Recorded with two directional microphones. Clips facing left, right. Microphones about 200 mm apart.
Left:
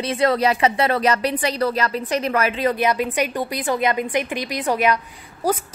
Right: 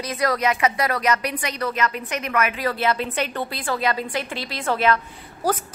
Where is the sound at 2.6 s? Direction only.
15° left (ahead or behind).